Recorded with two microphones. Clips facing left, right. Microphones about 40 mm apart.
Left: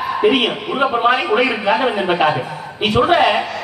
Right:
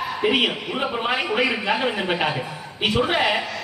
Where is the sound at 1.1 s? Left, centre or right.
Centre.